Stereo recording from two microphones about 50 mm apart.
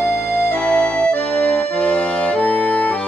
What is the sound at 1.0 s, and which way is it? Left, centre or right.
Accordion, left.